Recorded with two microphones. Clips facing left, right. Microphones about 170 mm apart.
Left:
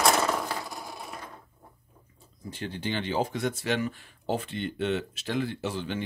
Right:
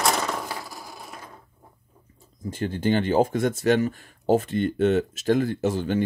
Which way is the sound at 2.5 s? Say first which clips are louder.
Right 9 dB; 45° right (ahead or behind).